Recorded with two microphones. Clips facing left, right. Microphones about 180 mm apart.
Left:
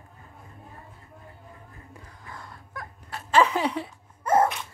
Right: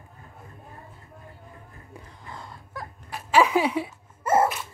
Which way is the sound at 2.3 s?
30° right (ahead or behind).